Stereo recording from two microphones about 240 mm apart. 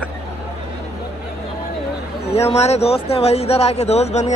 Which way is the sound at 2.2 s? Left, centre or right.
Left.